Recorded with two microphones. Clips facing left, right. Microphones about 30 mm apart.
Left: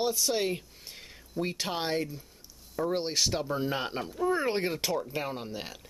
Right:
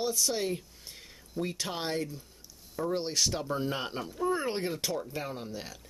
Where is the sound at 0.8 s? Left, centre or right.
Centre.